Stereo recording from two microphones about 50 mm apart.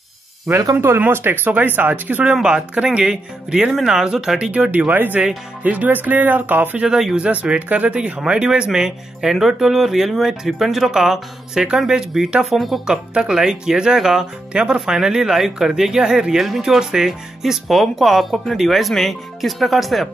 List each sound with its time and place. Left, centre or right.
0.7 s speech: right
2.4 s speech: right
4.6 s speech: right
7.2 s speech: centre
12.8 s speech: centre
14.5 s speech: right; by 20.1 s centre